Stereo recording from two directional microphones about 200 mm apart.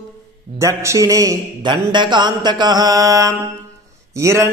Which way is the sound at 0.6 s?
15° right (ahead or behind).